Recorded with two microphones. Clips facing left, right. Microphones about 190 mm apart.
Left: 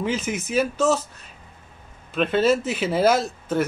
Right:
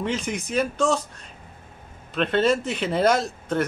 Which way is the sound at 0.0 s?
5° left (ahead or behind).